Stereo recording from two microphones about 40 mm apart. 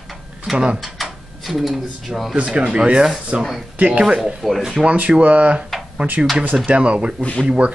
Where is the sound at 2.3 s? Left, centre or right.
Right.